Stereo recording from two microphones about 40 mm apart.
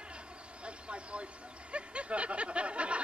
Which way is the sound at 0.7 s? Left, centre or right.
Right.